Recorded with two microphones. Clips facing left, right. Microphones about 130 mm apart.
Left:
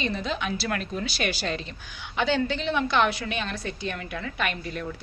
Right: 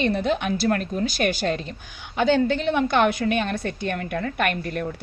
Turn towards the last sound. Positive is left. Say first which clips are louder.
# right 5 dB
turn(degrees=-60)  # may be behind; listen again after turning